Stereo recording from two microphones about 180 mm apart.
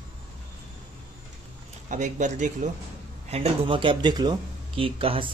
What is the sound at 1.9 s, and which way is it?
Speech, 45° right (ahead or behind).